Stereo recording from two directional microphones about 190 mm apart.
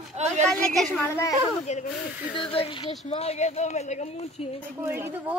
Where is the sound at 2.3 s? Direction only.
30° left (ahead or behind).